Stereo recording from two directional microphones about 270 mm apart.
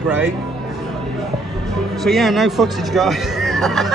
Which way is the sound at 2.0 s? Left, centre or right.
Centre.